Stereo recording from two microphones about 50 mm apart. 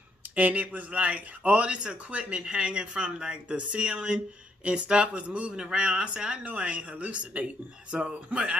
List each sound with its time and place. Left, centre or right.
0.4 s speech: right